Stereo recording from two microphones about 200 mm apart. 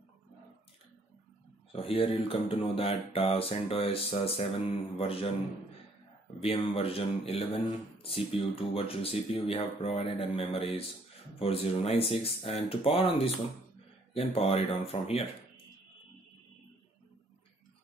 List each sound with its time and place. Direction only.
1.7 s speech: 30° left (ahead or behind)
6.4 s speech: 30° left (ahead or behind)
14.3 s speech: 30° left (ahead or behind)